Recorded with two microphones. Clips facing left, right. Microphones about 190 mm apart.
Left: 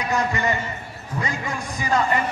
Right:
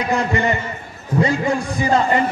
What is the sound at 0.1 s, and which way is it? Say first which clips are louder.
A man's voice: right 3 dB; 30° right (ahead or behind).